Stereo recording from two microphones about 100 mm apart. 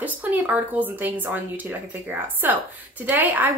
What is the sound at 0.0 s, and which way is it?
A woman's voice, 15° right (ahead or behind).